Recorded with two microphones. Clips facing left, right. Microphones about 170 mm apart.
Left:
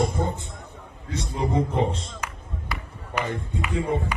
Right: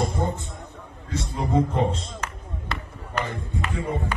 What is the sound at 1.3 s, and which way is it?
A man's voice, 20° left (ahead or behind).